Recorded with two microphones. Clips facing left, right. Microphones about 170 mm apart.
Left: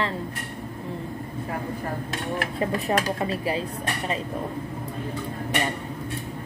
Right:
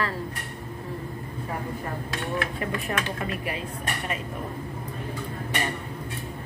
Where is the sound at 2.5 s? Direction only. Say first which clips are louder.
Left 5 dB; 35° left (ahead or behind).